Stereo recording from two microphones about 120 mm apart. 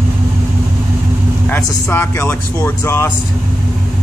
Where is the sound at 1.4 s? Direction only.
20° left (ahead or behind).